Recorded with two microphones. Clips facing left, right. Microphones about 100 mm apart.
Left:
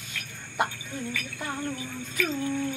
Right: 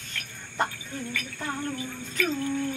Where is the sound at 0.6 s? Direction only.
10° left (ahead or behind).